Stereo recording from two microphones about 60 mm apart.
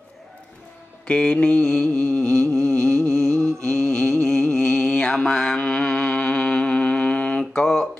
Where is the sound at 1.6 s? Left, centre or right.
Centre.